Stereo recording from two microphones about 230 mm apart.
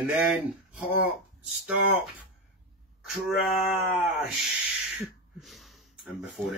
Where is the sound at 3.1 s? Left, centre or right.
Centre.